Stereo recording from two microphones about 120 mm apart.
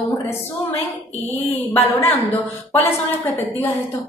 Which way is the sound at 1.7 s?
25° left (ahead or behind).